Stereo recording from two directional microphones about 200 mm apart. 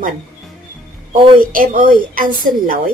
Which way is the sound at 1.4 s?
45° right (ahead or behind).